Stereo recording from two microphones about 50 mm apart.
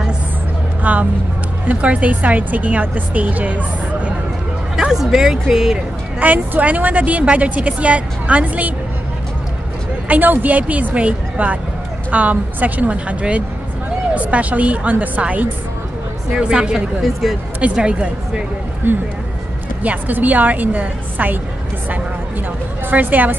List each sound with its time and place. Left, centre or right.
0.8 s a woman's voice: right
4.7 s speech: centre
6.1 s a woman's voice: right
10.0 s a woman's voice: right
16.3 s a woman's voice: right
17.0 s speech: centre
17.7 s a woman's voice: right
18.8 s a woman's voice: right
22.8 s a woman's voice: right